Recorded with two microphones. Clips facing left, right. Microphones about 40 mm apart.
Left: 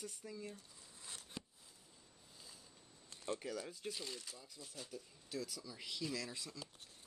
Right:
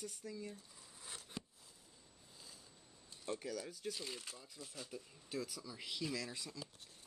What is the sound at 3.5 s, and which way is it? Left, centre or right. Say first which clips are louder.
Speech: right 1 dB; left.